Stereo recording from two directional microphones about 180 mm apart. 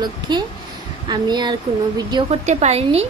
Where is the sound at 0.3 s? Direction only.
25° right (ahead or behind).